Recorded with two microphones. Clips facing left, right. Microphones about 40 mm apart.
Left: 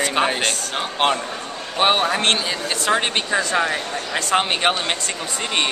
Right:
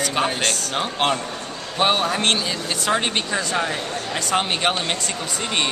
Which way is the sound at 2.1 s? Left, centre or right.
Centre.